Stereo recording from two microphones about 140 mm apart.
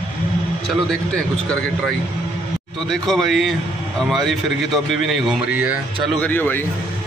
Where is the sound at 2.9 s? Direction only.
Centre (ahead or behind).